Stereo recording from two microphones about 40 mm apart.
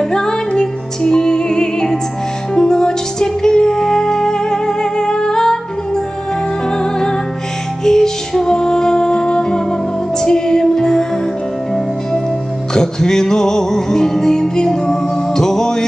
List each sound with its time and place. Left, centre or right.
0.1 s music: centre
6.8 s music: centre
12.7 s music: centre